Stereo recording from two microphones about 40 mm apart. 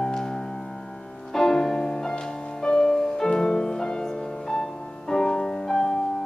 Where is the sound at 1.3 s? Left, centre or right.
Centre.